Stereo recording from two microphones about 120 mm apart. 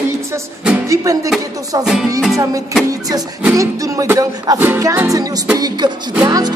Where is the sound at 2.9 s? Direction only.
30° right (ahead or behind).